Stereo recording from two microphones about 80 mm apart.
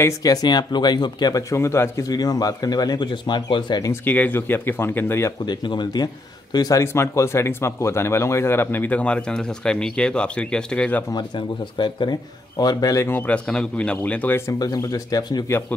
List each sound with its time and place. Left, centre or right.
0.2 s speech: left
1.5 s speech: left
3.9 s speech: left
5.4 s speech: left
6.5 s speech: left
6.8 s speech: left; by 11.1 s centre
11.1 s speech: left
13.1 s speech: left
13.5 s a man's voice: centre
14.6 s speech: left